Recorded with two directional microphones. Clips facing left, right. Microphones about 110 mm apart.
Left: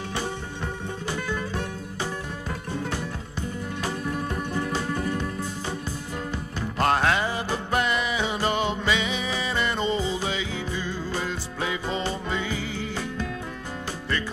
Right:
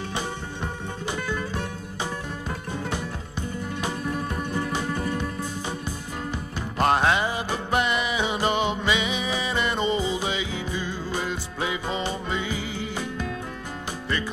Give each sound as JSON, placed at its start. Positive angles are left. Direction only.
{"t": 2.9, "sound": "music", "side_deg": -20}
{"t": 6.8, "sound": "music", "side_deg": -20}